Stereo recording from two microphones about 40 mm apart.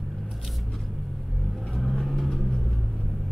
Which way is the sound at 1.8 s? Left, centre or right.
Centre.